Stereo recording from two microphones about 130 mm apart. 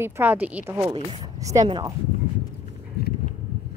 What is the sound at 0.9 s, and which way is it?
Speech, 35° right (ahead or behind).